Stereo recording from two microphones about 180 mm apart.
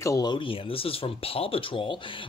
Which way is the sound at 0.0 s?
20° left (ahead or behind).